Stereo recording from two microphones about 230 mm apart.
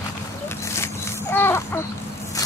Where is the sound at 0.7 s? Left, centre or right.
Centre.